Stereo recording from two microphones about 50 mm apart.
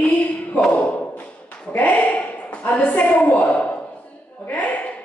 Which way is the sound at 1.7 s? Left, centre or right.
Left.